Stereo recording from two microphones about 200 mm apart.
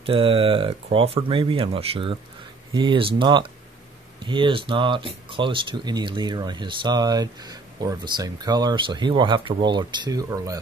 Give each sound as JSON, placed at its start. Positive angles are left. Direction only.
{"t": 0.0, "sound": "speech", "side_deg": -25}